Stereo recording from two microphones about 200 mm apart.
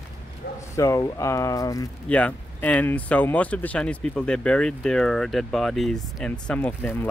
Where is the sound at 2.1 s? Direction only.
5° left (ahead or behind).